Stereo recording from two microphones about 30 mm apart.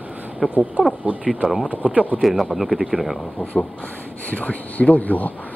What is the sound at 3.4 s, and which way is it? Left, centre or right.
Speech, left.